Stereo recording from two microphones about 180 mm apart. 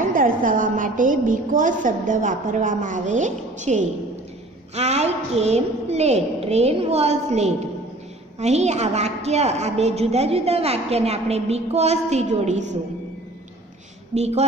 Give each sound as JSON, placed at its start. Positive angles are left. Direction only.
{"t": 0.1, "sound": "a woman's voice", "side_deg": -50}
{"t": 14.1, "sound": "a woman's voice", "side_deg": -35}